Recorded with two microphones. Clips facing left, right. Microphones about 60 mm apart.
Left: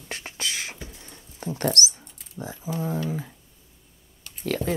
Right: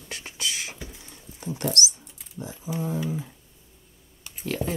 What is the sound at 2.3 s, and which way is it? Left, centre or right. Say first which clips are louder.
Speech: left 2 dB; left.